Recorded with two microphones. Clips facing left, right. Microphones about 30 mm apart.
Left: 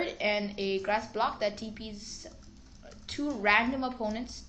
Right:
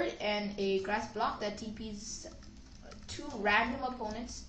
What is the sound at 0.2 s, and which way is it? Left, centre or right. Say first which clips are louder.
A woman's voice: left 3 dB; left.